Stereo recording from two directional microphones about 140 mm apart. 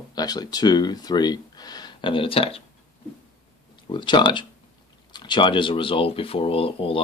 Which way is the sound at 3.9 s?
35° left (ahead or behind).